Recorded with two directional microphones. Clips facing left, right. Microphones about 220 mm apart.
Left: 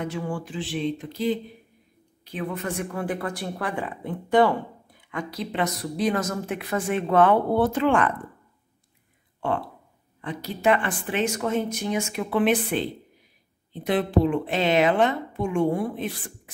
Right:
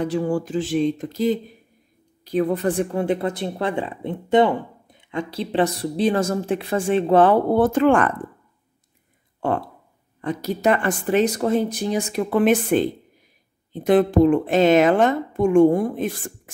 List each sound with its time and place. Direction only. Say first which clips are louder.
0.0 s a woman's voice: right 8 dB; 35° right (ahead or behind)
7.5 s a woman's voice: right 5 dB; 50° right (ahead or behind)
9.4 s a woman's voice: right 4 dB; 40° right (ahead or behind)